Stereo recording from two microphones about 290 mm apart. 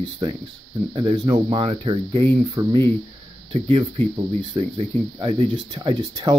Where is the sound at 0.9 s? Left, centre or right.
Centre.